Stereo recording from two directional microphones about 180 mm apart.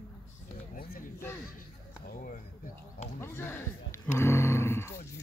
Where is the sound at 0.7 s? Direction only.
55° left (ahead or behind).